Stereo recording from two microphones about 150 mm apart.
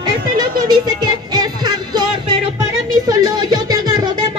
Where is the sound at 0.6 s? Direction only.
30° right (ahead or behind).